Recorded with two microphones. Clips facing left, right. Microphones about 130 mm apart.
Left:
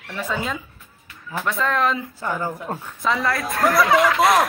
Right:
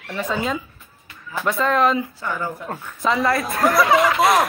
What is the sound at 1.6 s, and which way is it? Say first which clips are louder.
Speech: right 4 dB; centre (ahead or behind).